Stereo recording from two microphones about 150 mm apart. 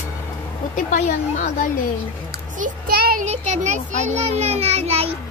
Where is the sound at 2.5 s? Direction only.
75° right (ahead or behind).